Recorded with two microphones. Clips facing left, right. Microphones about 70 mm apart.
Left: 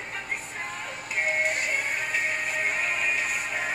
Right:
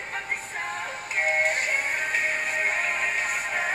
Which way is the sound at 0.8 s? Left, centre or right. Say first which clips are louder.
Right 1 dB; right.